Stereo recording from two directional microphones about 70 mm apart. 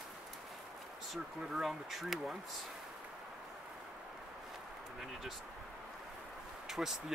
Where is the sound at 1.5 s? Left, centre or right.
Centre.